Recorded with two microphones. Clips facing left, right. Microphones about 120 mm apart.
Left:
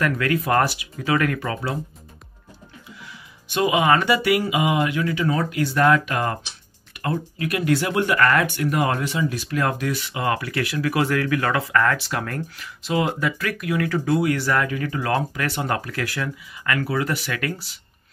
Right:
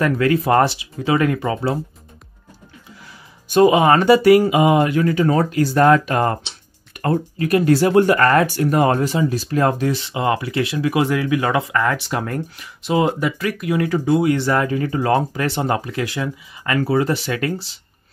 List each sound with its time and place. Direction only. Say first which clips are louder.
0.0 s speech: right 5 dB; 30° right (ahead or behind)
3.1 s speech: right 5 dB; 40° right (ahead or behind)